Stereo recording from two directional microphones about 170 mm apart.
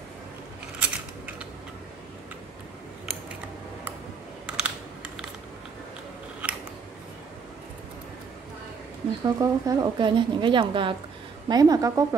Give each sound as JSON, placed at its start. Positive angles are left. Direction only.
{"t": 0.7, "sound": "a sound", "side_deg": -5}
{"t": 4.5, "sound": "computer keyboard", "side_deg": -5}
{"t": 9.2, "sound": "a woman's voice", "side_deg": -20}